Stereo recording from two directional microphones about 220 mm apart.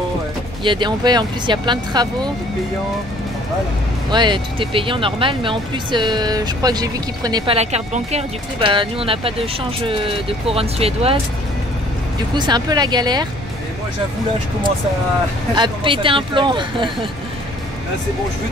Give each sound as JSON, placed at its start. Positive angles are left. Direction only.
{"t": 0.7, "sound": "speech", "side_deg": -20}
{"t": 4.1, "sound": "speech", "side_deg": -20}
{"t": 12.4, "sound": "speech", "side_deg": -20}
{"t": 15.5, "sound": "speech", "side_deg": -20}